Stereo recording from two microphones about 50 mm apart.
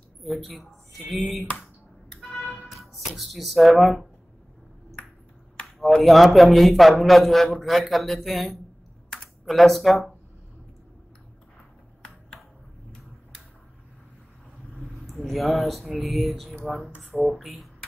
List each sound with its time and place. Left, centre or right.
0.2 s a man's voice: centre
2.2 s a sound: left
2.6 s speech: centre
6.0 s a man's voice: centre
15.2 s a man's voice: centre